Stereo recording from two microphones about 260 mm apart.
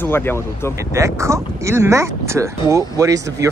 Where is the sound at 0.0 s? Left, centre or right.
Centre.